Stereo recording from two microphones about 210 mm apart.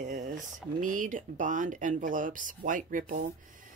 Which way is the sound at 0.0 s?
40° right (ahead or behind).